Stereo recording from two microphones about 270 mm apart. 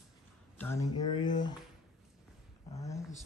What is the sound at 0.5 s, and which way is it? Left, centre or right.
Speech, centre.